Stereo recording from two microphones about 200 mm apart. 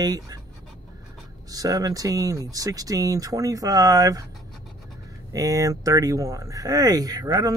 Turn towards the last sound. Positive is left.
turn(degrees=-20)  # may be behind; listen again after turning